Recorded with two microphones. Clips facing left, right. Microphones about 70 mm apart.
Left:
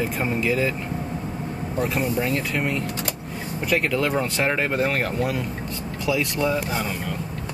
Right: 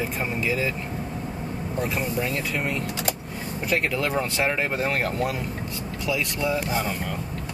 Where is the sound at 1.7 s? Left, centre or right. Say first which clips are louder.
Left 3 dB; centre.